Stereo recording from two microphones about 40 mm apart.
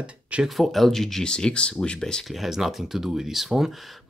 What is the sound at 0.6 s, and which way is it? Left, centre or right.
Speech, centre.